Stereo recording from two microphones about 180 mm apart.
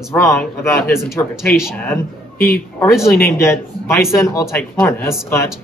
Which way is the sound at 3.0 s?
15° left (ahead or behind).